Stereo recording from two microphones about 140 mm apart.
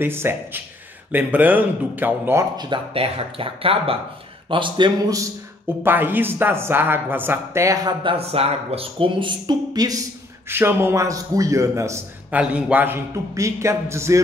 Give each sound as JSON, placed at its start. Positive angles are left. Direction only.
{"t": 0.0, "sound": "speech", "side_deg": -15}
{"t": 2.5, "sound": "speech", "side_deg": -35}
{"t": 5.9, "sound": "speech", "side_deg": -15}
{"t": 8.0, "sound": "speech", "side_deg": -40}
{"t": 10.5, "sound": "a man's voice", "side_deg": -15}
{"t": 12.3, "sound": "a man's voice", "side_deg": -10}